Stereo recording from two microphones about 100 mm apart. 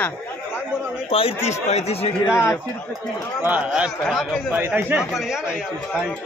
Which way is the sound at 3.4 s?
15° right (ahead or behind).